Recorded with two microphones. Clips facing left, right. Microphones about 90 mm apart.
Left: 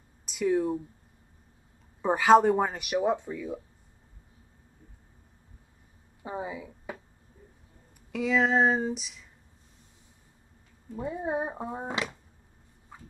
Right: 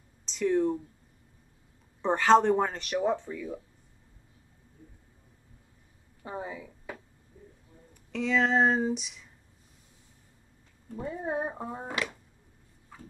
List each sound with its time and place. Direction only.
0.2 s speech: 10° left (ahead or behind)
2.0 s speech: 10° left (ahead or behind)
6.2 s a sound: 15° left (ahead or behind)
8.1 s speech: 5° left (ahead or behind)
11.0 s speech: 10° left (ahead or behind)
12.9 s a sound: 20° left (ahead or behind)